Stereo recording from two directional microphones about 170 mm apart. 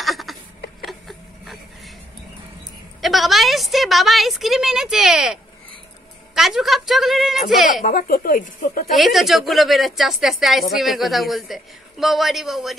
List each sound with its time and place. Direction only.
0.0 s a sound: centre (ahead or behind)
3.0 s a woman's voice: centre (ahead or behind)
7.8 s speech: 55° left (ahead or behind)
8.9 s a woman's voice: centre (ahead or behind)